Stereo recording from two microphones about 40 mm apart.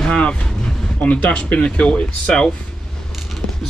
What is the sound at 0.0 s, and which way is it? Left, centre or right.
Speech, left.